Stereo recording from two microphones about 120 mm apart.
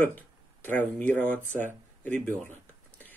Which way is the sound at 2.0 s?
15° left (ahead or behind).